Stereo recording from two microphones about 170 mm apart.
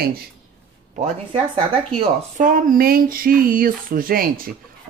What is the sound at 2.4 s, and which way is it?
Speech, 55° right (ahead or behind).